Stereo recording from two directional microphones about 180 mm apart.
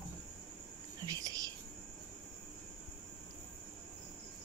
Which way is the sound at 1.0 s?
20° right (ahead or behind).